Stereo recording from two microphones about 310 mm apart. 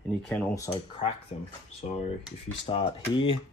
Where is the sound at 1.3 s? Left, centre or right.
Centre.